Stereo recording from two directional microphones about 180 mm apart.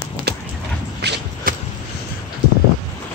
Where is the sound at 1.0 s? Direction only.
60° right (ahead or behind).